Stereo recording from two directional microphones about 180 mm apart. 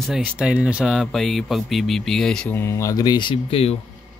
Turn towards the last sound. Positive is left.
turn(degrees=30)  # may be behind; listen again after turning